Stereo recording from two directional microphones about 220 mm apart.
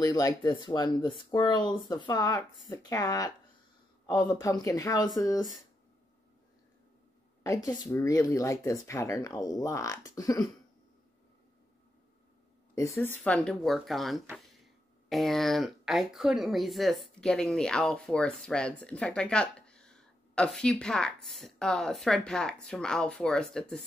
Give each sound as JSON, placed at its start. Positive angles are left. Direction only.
{"t": 0.0, "sound": "speech", "side_deg": 15}
{"t": 7.4, "sound": "speech", "side_deg": 15}
{"t": 12.7, "sound": "speech", "side_deg": 15}